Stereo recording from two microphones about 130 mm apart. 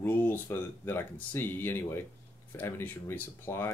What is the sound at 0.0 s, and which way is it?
Speech, 15° left (ahead or behind).